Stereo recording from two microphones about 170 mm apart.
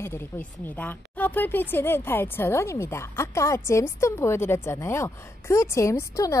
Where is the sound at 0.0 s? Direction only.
15° left (ahead or behind).